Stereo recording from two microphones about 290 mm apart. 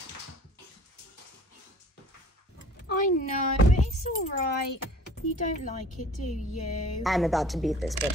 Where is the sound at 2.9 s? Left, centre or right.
Left.